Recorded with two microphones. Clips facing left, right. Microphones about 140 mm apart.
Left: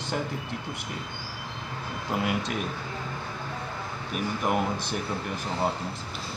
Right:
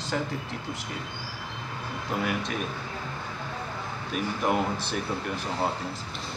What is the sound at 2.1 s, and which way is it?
Speech, 15° left (ahead or behind).